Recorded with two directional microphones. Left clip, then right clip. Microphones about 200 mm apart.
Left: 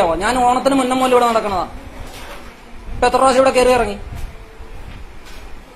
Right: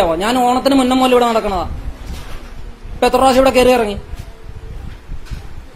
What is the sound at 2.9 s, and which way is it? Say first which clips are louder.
A man's voice: right 1 dB; 35° right (ahead or behind).